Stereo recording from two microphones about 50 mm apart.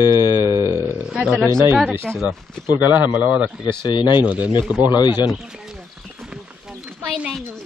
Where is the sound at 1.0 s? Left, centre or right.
Centre.